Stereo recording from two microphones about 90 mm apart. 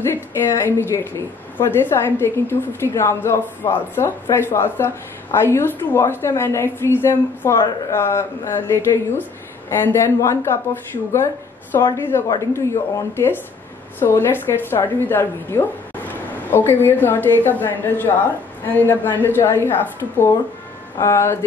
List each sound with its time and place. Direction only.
0.0 s a woman's voice: 30° left (ahead or behind)